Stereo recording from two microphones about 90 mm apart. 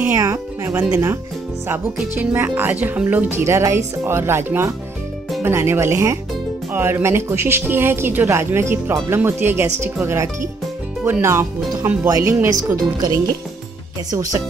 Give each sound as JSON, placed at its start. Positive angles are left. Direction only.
{"t": 0.1, "sound": "speech", "side_deg": -35}
{"t": 12.7, "sound": "speech", "side_deg": -45}